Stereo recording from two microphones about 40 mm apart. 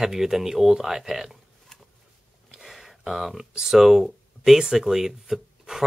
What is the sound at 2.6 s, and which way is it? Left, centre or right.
Speech, centre.